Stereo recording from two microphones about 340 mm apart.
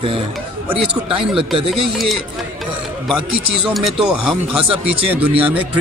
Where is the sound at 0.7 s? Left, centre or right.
Centre.